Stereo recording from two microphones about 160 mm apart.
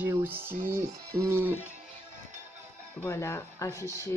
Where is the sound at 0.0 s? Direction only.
15° right (ahead or behind).